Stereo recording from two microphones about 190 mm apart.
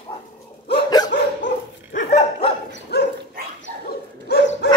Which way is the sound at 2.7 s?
60° left (ahead or behind).